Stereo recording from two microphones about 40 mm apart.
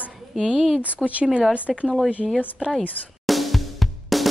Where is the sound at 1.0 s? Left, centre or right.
Right.